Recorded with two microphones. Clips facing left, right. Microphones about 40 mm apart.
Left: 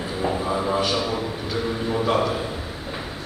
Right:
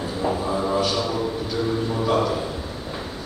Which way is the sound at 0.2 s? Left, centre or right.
Centre.